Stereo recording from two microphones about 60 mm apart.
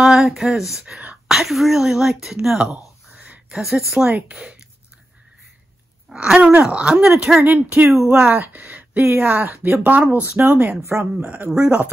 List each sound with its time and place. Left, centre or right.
0.0 s speech: centre
3.2 s a sound: right
3.8 s speech: centre
6.1 s groan: centre
6.6 s speech: centre
7.3 s speech: right
8.1 s speech: centre
10.9 s speech: right
11.2 s speech: right